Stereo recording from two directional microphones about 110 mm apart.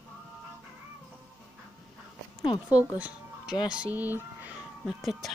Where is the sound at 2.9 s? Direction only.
10° right (ahead or behind).